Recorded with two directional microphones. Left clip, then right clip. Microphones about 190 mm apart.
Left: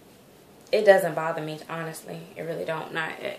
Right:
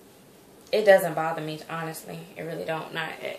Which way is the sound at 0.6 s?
25° left (ahead or behind).